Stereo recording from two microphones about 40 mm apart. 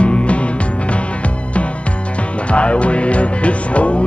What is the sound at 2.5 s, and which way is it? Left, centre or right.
Music, left.